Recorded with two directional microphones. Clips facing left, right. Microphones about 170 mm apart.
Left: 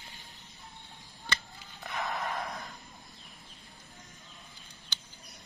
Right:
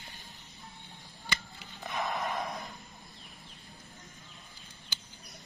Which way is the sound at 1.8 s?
15° right (ahead or behind).